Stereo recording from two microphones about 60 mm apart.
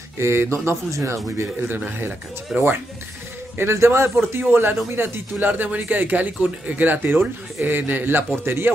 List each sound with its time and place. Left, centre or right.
0.2 s a man's voice: right
1.9 s a man's voice: right
4.3 s speech: right